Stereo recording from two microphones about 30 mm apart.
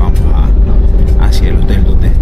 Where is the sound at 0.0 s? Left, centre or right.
Centre.